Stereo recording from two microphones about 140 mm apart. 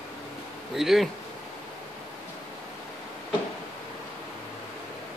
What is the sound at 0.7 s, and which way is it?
Speech, centre (ahead or behind).